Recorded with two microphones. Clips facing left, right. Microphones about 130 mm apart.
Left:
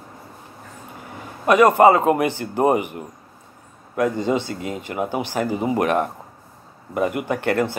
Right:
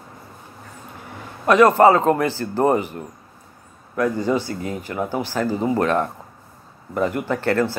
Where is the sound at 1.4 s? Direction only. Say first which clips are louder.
Even; 10° left (ahead or behind).